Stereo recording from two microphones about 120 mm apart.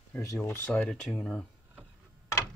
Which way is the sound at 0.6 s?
10° left (ahead or behind).